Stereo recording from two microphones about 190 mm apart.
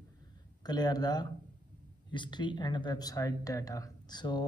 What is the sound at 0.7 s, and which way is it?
Speech, 20° left (ahead or behind).